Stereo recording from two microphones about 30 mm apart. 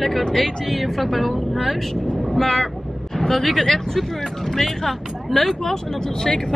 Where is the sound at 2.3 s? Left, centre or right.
Centre.